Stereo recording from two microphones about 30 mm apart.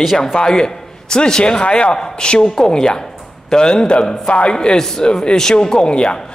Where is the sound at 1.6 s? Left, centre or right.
Left.